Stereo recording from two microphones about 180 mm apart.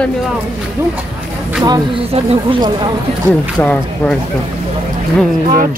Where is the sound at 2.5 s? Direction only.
25° right (ahead or behind).